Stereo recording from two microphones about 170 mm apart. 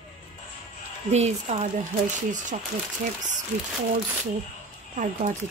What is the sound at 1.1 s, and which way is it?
Speech, 40° right (ahead or behind).